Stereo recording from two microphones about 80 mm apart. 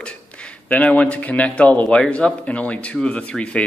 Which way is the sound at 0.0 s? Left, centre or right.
Centre.